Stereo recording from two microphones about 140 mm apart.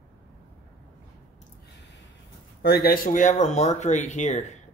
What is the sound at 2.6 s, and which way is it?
Speech, 90° left.